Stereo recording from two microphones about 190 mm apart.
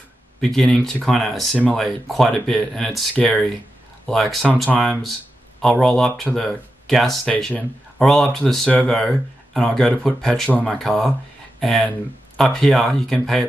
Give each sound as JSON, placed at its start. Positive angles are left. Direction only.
{"t": 0.4, "sound": "speech", "side_deg": 0}